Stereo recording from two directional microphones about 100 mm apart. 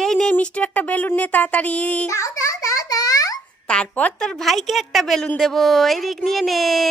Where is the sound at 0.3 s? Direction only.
10° left (ahead or behind).